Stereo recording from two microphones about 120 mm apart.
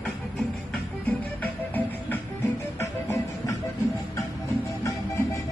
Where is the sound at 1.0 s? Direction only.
15° left (ahead or behind).